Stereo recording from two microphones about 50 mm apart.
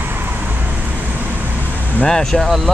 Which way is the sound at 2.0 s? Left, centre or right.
Centre.